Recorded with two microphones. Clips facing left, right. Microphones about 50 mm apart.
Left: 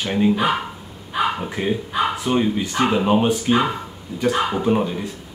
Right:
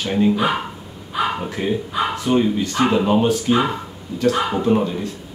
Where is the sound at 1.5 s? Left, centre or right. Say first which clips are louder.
Right 1 dB; centre.